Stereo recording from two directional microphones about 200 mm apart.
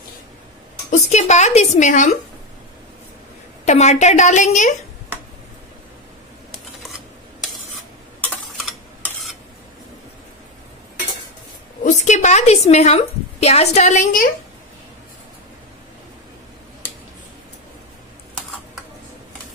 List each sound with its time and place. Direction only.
0.8 s a woman's voice: 35° left (ahead or behind)
3.6 s a woman's voice: 35° left (ahead or behind)
9.0 s stir: centre (ahead or behind)
11.8 s a woman's voice: 35° left (ahead or behind)